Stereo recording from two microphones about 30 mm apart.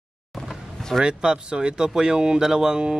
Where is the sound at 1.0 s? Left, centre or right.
Right.